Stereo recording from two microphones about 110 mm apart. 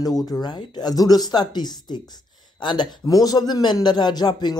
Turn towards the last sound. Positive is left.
turn(degrees=40)  # may be behind; listen again after turning